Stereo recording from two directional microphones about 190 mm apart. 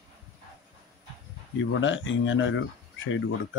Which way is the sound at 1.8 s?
85° left.